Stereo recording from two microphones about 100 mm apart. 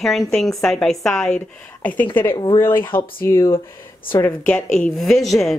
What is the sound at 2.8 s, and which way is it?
Speech, 55° left (ahead or behind).